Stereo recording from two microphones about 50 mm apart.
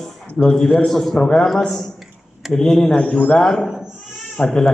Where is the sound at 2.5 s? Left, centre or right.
Centre.